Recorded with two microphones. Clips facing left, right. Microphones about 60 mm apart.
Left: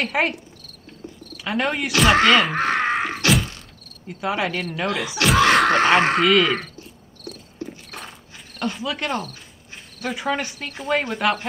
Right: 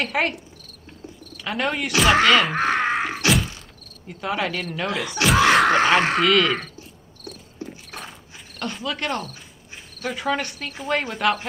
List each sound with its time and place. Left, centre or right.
0.0 s speech: centre
3.3 s thunk: centre
4.2 s speech: centre
7.6 s horse: centre
8.5 s speech: centre